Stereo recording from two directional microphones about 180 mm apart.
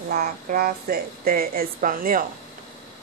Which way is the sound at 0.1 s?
55° right (ahead or behind).